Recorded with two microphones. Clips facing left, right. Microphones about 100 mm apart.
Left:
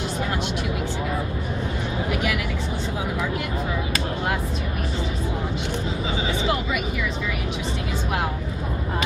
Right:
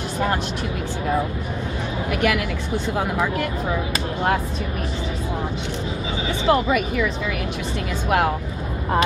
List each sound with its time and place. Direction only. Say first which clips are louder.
2.0 s a woman's voice: right 7 dB; 55° right (ahead or behind)
6.4 s speech: right 6 dB; 45° right (ahead or behind)